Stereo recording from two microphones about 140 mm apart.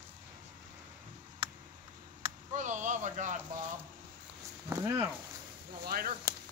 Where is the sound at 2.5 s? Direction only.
60° right (ahead or behind).